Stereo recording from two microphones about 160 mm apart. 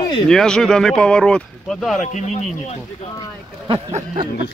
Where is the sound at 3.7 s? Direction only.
35° right (ahead or behind).